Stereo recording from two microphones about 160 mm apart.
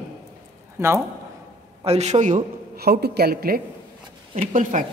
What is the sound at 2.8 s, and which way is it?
Speech, 80° right.